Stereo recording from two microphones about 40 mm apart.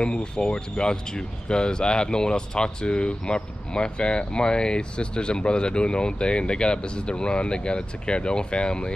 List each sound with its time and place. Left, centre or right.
0.0 s speech: left